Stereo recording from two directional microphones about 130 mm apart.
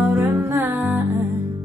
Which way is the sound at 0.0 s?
20° right (ahead or behind).